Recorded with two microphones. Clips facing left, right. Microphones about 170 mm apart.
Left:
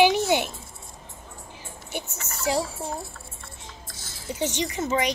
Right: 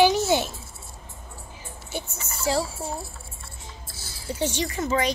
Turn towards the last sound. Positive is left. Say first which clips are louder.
# even
turn(degrees=20)  # may be behind; listen again after turning